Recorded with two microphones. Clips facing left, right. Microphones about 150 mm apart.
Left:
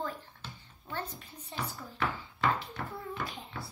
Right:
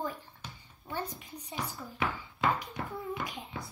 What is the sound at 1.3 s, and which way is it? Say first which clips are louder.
Speech: even; 10° right (ahead or behind).